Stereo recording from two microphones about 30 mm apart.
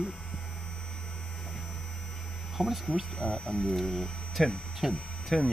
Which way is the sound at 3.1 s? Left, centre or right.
Centre.